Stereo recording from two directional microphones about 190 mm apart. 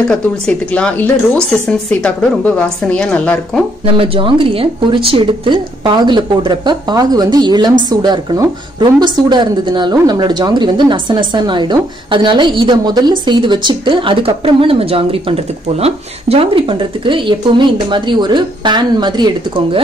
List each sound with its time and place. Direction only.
0.1 s speech: 5° left (ahead or behind)
3.8 s speech: 30° right (ahead or behind)